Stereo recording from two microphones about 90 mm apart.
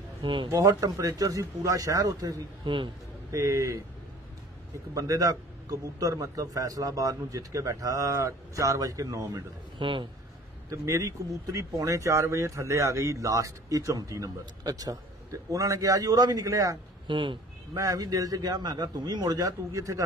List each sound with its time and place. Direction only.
0.2 s speech: 70° right (ahead or behind)
0.5 s a man's voice: 35° right (ahead or behind)
2.6 s a man's voice: 70° right (ahead or behind)
3.3 s a man's voice: 35° right (ahead or behind)
4.9 s a man's voice: 40° right (ahead or behind)
9.8 s a man's voice: 70° right (ahead or behind)
10.7 s a man's voice: 40° right (ahead or behind)
17.1 s speech: 65° right (ahead or behind)
17.7 s a man's voice: 40° right (ahead or behind)